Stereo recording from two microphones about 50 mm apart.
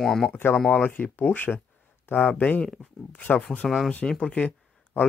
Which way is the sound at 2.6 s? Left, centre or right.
Centre.